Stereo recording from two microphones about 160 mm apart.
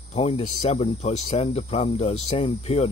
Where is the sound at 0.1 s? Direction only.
40° left (ahead or behind).